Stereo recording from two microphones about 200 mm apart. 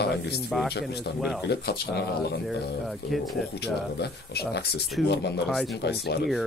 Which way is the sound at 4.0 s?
55° left (ahead or behind).